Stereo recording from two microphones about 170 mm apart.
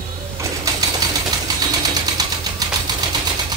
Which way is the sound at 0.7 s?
20° right (ahead or behind).